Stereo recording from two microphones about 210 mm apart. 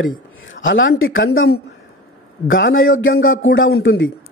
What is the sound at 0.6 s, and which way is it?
A man's voice, 65° left (ahead or behind).